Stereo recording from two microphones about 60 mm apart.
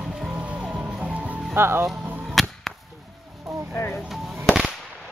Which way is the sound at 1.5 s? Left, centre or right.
Right.